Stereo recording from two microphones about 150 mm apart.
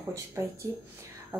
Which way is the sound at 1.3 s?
15° right (ahead or behind).